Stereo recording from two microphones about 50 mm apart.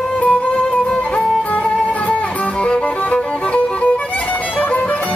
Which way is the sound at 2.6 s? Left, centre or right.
Left.